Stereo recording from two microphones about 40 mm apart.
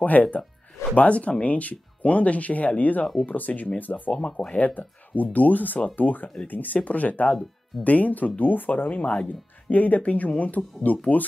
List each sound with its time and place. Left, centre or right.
0.0 s speech: left